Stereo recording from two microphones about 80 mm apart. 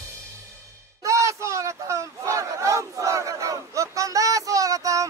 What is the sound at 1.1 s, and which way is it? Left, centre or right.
Battle cry, right.